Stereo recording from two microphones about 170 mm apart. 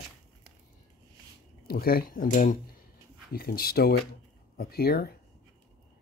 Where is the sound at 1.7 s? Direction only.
60° left (ahead or behind).